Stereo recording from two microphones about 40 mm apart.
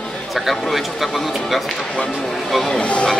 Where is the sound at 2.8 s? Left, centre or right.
Left.